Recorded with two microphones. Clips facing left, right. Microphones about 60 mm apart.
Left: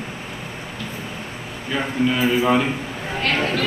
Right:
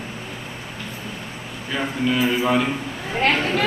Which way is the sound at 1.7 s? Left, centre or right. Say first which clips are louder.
Left 2 dB; centre.